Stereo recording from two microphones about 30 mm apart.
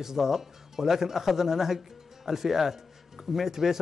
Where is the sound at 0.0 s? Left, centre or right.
Centre.